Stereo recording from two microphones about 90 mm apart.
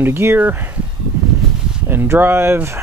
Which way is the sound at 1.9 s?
25° right (ahead or behind).